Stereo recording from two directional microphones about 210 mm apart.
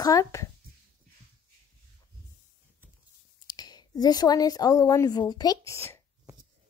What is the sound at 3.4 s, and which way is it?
A woman's voice, 20° left (ahead or behind).